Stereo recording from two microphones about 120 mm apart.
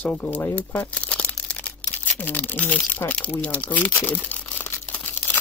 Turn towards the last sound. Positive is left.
turn(degrees=15)  # may be behind; listen again after turning